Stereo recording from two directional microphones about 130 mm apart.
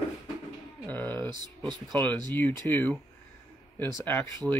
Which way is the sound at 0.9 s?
10° left (ahead or behind).